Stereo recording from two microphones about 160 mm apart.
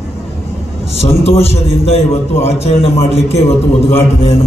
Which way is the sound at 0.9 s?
40° left (ahead or behind).